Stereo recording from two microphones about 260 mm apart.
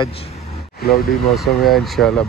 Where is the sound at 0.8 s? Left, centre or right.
Left.